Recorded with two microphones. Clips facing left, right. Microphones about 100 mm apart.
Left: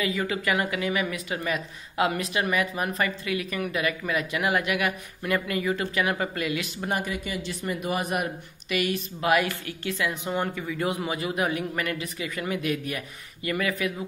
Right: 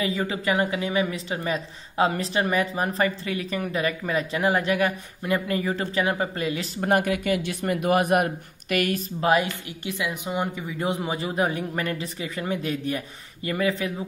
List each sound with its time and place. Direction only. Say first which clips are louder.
0.0 s a woman's voice: right 1 dB; 30° right (ahead or behind)
6.9 s speech: right 8 dB; 55° right (ahead or behind)
9.2 s a woman's voice: right 2 dB; 25° right (ahead or behind)